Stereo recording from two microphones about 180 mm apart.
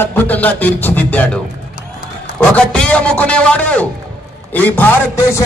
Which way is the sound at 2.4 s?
5° left (ahead or behind).